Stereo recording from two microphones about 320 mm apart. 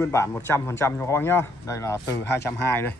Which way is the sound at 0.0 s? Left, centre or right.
Centre.